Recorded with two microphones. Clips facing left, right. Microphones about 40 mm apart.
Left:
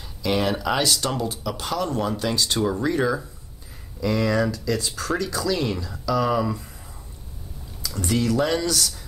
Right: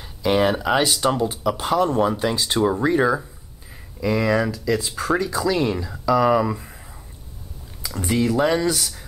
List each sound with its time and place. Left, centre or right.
0.2 s speech: right
7.8 s speech: right